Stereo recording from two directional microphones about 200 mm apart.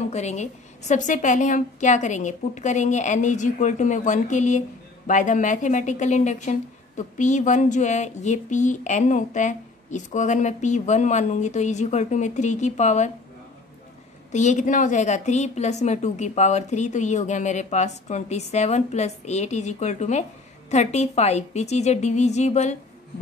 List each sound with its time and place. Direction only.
0.1 s a woman's voice: 35° left (ahead or behind)
14.3 s a woman's voice: 35° left (ahead or behind)